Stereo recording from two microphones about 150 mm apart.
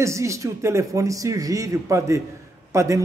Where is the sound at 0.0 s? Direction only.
20° right (ahead or behind).